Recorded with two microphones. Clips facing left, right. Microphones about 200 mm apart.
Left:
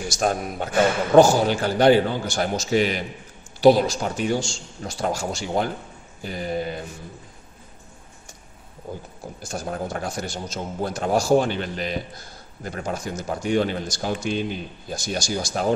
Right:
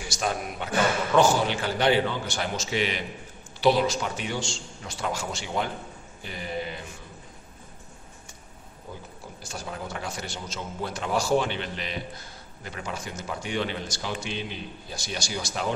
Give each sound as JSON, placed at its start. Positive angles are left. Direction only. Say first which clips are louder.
{"t": 0.1, "sound": "a man's voice", "louder": "left 5 dB", "side_deg": 45}
{"t": 9.4, "sound": "a man's voice", "louder": "left 7 dB", "side_deg": 50}